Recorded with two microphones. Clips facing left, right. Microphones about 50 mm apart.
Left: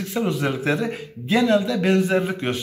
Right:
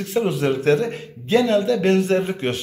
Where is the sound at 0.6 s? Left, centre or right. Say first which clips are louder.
Right 4 dB; centre.